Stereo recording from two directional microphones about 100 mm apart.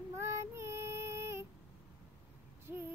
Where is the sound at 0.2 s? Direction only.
30° right (ahead or behind).